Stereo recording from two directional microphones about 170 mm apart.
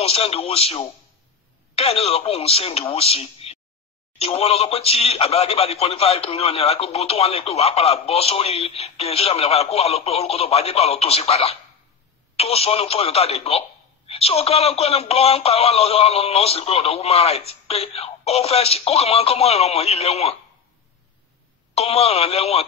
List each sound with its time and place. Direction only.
0.0 s speech: 35° left (ahead or behind)
21.7 s speech: 40° left (ahead or behind)